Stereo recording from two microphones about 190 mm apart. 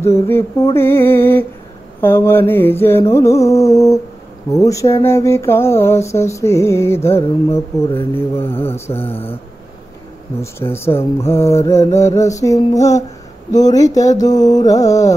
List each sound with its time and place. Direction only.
0.0 s mantra: 15° left (ahead or behind)
10.4 s mantra: 10° left (ahead or behind)
13.5 s speech: 20° left (ahead or behind)
13.9 s mantra: 20° left (ahead or behind)